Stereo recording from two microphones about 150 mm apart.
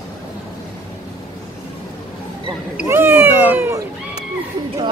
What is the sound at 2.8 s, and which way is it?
Speech, 15° right (ahead or behind).